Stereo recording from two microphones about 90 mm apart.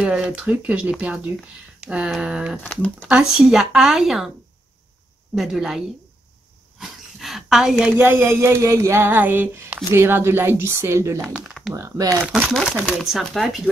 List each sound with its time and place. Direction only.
0.0 s speech: 10° right (ahead or behind)
2.6 s speech: 10° left (ahead or behind)
3.1 s speech: 10° right (ahead or behind)
5.3 s speech: 5° right (ahead or behind)
6.8 s speech: centre (ahead or behind)
8.0 s speech: 25° right (ahead or behind)
12.5 s speech: centre (ahead or behind)